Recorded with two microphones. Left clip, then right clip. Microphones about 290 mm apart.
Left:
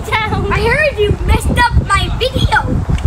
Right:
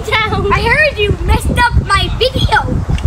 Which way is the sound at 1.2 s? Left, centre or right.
Centre.